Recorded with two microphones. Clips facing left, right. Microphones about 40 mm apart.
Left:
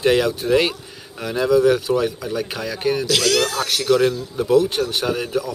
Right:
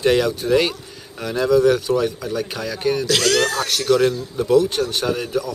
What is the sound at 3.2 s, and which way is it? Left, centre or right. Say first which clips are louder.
Speech: right 1 dB; right.